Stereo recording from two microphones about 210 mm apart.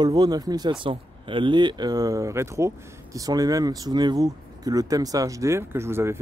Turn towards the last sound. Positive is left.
turn(degrees=-10)  # may be behind; listen again after turning